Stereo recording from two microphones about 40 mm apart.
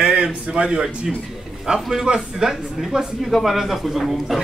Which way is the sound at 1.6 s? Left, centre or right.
Centre.